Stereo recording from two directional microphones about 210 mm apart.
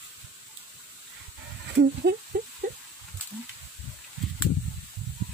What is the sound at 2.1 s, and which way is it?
Speech, 50° right (ahead or behind).